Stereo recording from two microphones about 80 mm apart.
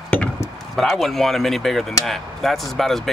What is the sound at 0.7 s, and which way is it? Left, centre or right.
Speech, centre.